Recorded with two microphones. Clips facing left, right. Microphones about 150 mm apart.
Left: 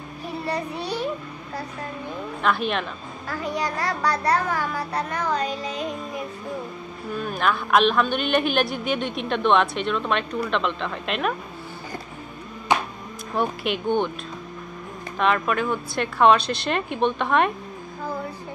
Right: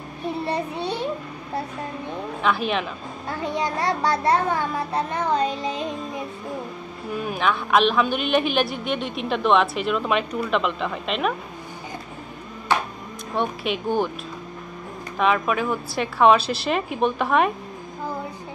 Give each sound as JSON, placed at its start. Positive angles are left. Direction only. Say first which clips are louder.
{"t": 0.5, "sound": "child singing", "louder": "left 1 dB", "side_deg": -25}
{"t": 2.4, "sound": "a man's voice", "louder": "even", "side_deg": 0}
{"t": 3.3, "sound": "a child's voice", "louder": "right 1 dB", "side_deg": -25}
{"t": 7.2, "sound": "a man's voice", "louder": "even", "side_deg": -5}
{"t": 12.7, "sound": "music", "louder": "left 1 dB", "side_deg": 15}
{"t": 13.3, "sound": "a man's voice", "louder": "even", "side_deg": 0}
{"t": 15.1, "sound": "a man's voice", "louder": "right 1 dB", "side_deg": -5}